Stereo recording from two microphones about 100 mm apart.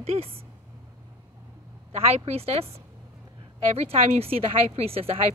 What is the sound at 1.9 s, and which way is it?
Speech, 85° right.